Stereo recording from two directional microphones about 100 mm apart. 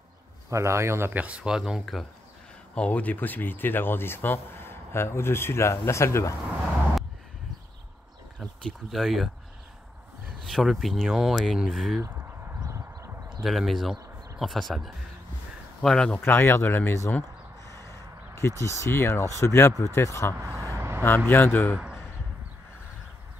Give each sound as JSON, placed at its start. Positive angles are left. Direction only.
{"t": 0.5, "sound": "speech", "side_deg": -30}
{"t": 2.7, "sound": "speech", "side_deg": 10}
{"t": 8.4, "sound": "speech", "side_deg": 0}
{"t": 10.4, "sound": "speech", "side_deg": 0}
{"t": 12.0, "sound": "a sound", "side_deg": -25}
{"t": 13.4, "sound": "speech", "side_deg": 0}
{"t": 16.2, "sound": "speech", "side_deg": 20}
{"t": 17.6, "sound": "a sound", "side_deg": 30}
{"t": 18.6, "sound": "speech", "side_deg": 25}
{"t": 20.3, "sound": "speech", "side_deg": -30}
{"t": 20.7, "sound": "vehicle", "side_deg": -25}
{"t": 21.3, "sound": "speech", "side_deg": 20}